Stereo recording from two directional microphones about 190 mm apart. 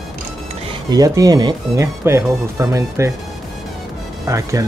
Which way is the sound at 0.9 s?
20° right (ahead or behind).